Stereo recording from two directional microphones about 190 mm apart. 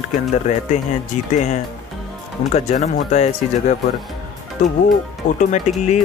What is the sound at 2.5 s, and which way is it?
Speech, 40° left (ahead or behind).